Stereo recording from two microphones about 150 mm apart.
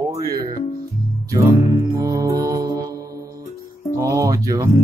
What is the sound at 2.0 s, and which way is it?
Music, 25° right (ahead or behind).